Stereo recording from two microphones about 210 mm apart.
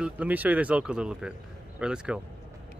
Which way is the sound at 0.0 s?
5° right (ahead or behind).